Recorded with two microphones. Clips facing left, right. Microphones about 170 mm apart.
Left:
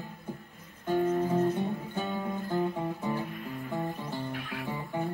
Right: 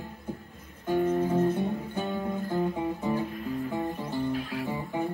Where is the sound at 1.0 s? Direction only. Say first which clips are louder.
Right 2 dB; 20° right (ahead or behind).